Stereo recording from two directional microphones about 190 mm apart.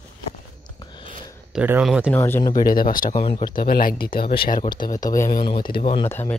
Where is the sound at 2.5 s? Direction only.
50° left (ahead or behind).